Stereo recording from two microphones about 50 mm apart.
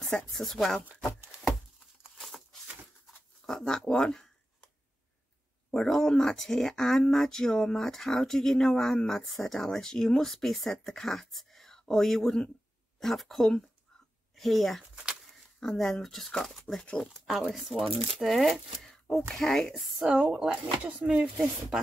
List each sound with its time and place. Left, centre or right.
0.3 s speech: centre
1.4 s a sound: centre
5.8 s speech: centre
20.0 s a woman's voice: centre